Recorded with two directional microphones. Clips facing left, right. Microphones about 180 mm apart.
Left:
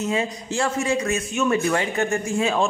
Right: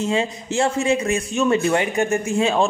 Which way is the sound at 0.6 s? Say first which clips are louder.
Right 3 dB; 25° right (ahead or behind).